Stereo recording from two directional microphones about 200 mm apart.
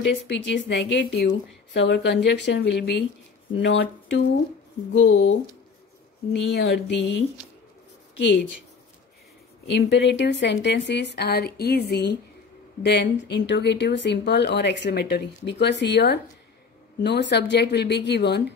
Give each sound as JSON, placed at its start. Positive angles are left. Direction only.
{"t": 0.1, "sound": "speech", "side_deg": 60}
{"t": 6.5, "sound": "speech", "side_deg": 60}
{"t": 9.7, "sound": "speech", "side_deg": 60}